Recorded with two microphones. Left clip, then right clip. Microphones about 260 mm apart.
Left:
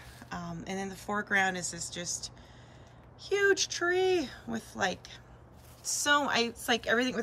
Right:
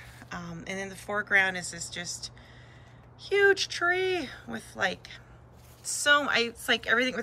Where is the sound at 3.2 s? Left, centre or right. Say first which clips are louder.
Right 4 dB; centre.